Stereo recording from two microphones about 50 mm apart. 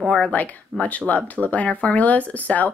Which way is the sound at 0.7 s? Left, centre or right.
Centre.